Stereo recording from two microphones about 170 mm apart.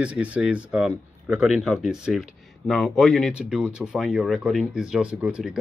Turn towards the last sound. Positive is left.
turn(degrees=-5)  # may be behind; listen again after turning